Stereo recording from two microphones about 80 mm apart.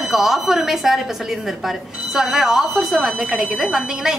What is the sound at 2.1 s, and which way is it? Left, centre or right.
Speech, centre.